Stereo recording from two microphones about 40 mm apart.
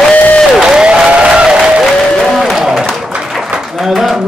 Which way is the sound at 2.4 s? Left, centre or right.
Centre.